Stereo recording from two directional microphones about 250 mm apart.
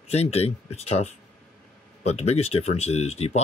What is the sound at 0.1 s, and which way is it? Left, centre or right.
Speech, left.